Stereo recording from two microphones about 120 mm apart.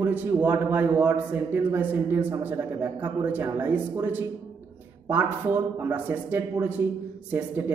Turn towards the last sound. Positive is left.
turn(degrees=-15)  # may be behind; listen again after turning